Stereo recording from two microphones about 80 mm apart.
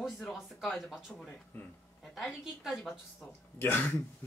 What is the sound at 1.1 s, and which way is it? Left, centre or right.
Speech, centre.